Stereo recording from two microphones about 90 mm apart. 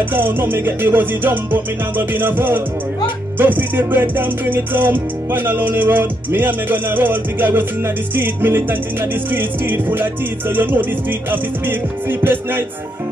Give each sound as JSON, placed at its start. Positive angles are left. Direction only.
{"t": 0.1, "sound": "music", "side_deg": -20}